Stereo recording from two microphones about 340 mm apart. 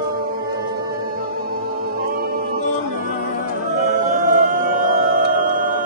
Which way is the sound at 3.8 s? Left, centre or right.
Right.